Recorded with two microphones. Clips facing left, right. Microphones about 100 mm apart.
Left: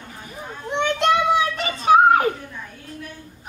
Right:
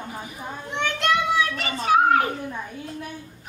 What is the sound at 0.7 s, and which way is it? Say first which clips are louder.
Children playing: left 4 dB; 20° left (ahead or behind).